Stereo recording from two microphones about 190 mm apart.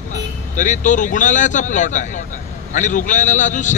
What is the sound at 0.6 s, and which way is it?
Speech, 40° left (ahead or behind).